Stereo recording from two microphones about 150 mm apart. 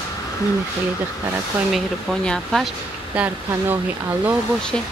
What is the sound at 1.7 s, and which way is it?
Speech, centre (ahead or behind).